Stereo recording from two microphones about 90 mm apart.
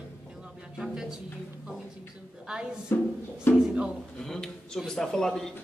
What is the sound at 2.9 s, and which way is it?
Music, 25° left (ahead or behind).